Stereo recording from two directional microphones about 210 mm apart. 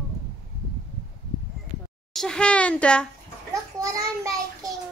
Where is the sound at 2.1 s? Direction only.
5° left (ahead or behind).